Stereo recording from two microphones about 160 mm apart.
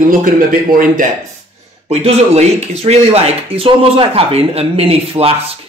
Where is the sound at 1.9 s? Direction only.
40° right (ahead or behind).